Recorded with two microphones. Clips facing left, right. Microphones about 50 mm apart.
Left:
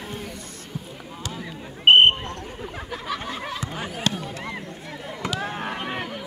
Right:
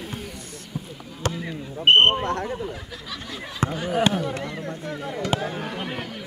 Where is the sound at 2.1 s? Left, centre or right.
Right.